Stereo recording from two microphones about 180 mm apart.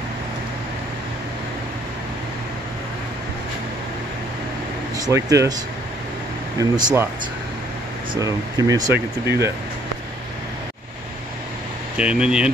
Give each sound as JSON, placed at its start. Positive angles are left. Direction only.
{"t": 4.9, "sound": "speech", "side_deg": -20}
{"t": 6.6, "sound": "speech", "side_deg": -20}
{"t": 8.2, "sound": "speech", "side_deg": -20}
{"t": 12.0, "sound": "speech", "side_deg": -5}